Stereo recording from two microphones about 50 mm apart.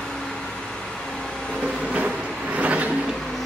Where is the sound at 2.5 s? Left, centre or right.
Right.